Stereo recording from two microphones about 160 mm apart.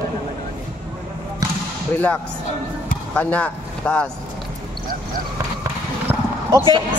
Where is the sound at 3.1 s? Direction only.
10° left (ahead or behind).